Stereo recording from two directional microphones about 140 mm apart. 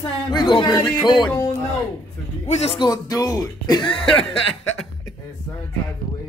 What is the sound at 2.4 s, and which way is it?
Speech, 50° left (ahead or behind).